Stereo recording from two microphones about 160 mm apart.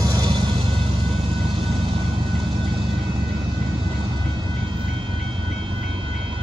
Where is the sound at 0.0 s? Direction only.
25° right (ahead or behind).